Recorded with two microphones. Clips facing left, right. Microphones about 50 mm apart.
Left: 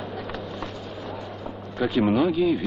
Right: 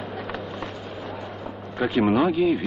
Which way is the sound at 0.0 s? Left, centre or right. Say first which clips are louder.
Right 1 dB; right.